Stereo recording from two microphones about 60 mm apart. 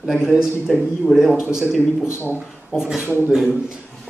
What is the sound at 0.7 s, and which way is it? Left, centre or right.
Speech, centre.